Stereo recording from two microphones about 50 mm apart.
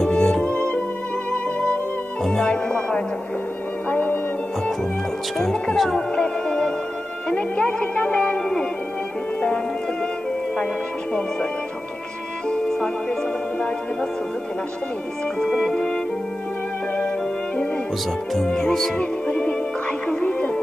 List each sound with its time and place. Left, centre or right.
0.0 s music: centre
0.4 s music: left
5.4 s music: centre
7.2 s music: left
12.4 s music: centre
15.3 s music: centre
18.3 s music: centre
18.9 s music: left